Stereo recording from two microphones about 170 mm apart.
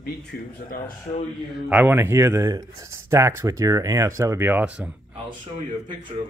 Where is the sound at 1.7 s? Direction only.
10° right (ahead or behind).